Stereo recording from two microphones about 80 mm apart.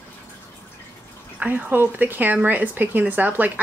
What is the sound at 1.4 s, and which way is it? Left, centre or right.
Speech, right.